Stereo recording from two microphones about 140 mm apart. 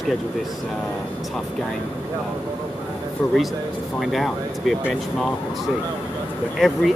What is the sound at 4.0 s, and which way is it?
Speech, centre (ahead or behind).